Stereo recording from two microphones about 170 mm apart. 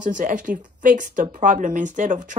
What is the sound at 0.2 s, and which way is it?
Speech, 55° right (ahead or behind).